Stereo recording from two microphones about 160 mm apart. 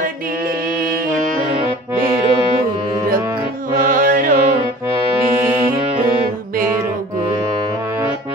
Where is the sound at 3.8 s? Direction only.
60° right (ahead or behind).